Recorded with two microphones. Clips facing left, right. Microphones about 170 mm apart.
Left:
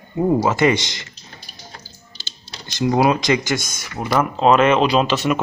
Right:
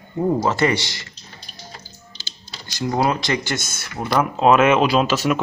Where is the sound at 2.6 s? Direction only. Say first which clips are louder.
Left 4 dB; 20° left (ahead or behind).